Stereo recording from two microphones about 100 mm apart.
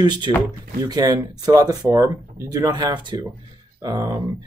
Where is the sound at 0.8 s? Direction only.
35° right (ahead or behind).